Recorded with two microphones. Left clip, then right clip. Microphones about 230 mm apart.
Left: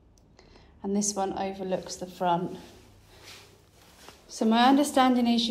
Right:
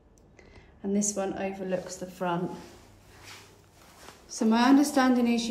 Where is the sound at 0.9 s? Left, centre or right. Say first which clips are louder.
Even; left.